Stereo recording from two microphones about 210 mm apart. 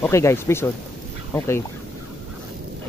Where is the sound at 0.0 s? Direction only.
15° left (ahead or behind).